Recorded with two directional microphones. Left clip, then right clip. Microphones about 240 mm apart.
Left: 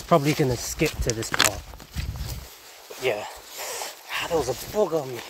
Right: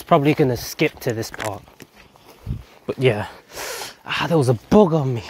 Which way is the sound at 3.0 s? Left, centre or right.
Right.